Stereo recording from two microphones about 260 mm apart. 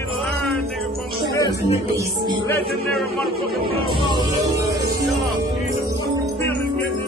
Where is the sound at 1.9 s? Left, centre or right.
Centre.